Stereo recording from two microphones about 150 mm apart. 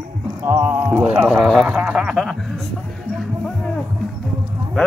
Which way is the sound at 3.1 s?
5° left (ahead or behind).